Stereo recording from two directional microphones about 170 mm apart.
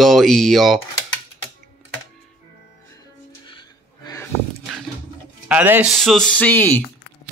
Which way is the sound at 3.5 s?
25° left (ahead or behind).